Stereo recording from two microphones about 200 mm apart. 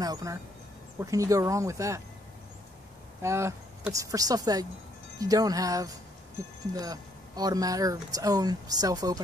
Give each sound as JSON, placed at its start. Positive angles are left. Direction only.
{"t": 0.0, "sound": "a sound", "side_deg": -20}
{"t": 1.1, "sound": "speech", "side_deg": -15}
{"t": 3.2, "sound": "speech", "side_deg": -15}